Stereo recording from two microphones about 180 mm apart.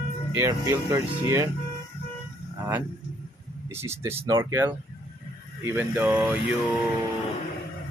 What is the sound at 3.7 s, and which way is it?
Speech, 15° right (ahead or behind).